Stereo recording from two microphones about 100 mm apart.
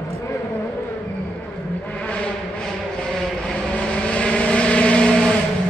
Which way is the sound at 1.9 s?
10° left (ahead or behind).